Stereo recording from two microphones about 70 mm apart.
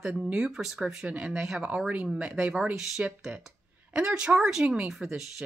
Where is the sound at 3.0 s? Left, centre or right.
Centre.